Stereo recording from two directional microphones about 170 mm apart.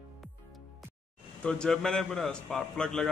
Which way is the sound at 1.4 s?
5° left (ahead or behind).